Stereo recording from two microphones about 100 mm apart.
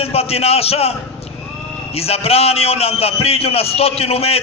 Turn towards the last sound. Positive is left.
turn(degrees=85)